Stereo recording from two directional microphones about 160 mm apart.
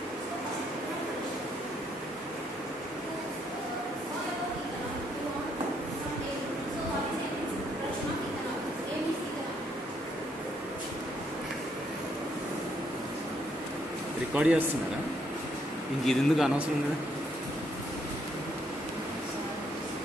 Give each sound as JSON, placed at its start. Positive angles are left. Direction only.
{"t": 14.3, "sound": "a man's voice", "side_deg": -5}
{"t": 16.1, "sound": "speech", "side_deg": -5}